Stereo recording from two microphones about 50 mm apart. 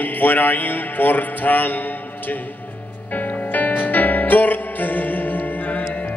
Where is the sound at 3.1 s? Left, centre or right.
Left.